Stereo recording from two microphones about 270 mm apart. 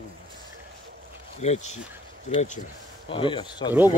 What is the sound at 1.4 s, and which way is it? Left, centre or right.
Speech, left.